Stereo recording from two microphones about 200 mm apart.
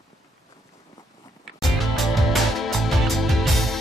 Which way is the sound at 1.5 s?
Centre (ahead or behind).